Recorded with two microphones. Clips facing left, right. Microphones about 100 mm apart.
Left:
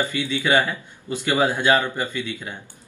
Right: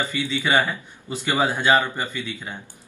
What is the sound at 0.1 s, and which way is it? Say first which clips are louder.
Speech: left 1 dB; 15° right (ahead or behind).